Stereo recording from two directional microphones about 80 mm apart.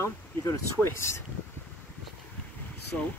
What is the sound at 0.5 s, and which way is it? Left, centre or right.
Speech, left.